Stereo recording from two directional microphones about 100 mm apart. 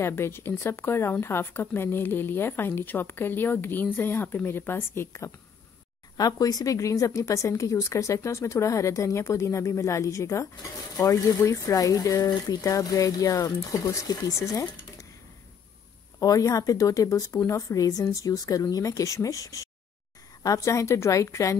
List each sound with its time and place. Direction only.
0.0 s a woman's voice: 25° left (ahead or behind)
6.1 s a woman's voice: 40° left (ahead or behind)
16.2 s a woman's voice: 35° left (ahead or behind)